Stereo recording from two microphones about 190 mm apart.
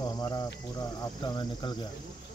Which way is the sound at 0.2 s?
20° left (ahead or behind).